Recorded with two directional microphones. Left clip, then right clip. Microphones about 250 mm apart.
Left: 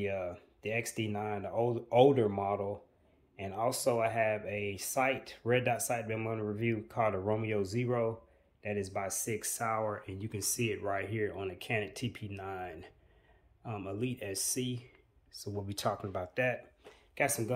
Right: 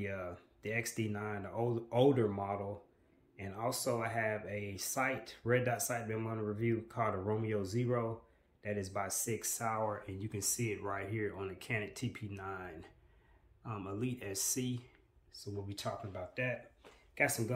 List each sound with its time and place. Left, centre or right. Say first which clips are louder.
0.0 s speech: left 6 dB; centre
15.3 s speech: left 4 dB; centre